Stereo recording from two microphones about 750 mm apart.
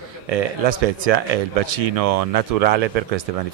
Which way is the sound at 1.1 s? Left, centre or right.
Right.